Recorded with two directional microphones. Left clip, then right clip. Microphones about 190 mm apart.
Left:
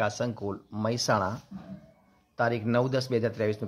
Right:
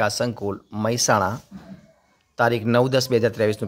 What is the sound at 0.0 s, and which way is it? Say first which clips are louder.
A man's voice: right 7 dB; 15° right (ahead or behind).